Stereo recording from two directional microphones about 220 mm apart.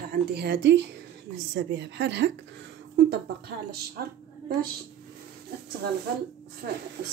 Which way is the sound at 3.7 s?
45° right (ahead or behind).